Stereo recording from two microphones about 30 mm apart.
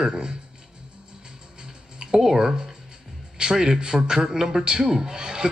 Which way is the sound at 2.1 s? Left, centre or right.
Centre.